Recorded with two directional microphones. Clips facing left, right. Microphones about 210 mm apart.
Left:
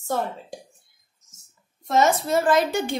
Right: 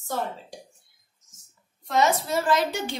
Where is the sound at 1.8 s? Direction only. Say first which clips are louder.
Left 3 dB; 45° left (ahead or behind).